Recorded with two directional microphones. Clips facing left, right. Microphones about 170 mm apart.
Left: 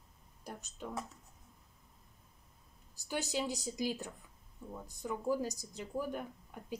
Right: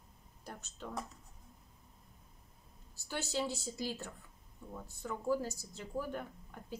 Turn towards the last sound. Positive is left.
turn(degrees=15)  # may be behind; listen again after turning